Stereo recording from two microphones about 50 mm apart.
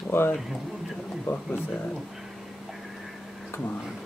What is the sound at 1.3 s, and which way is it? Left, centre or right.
Speech, left.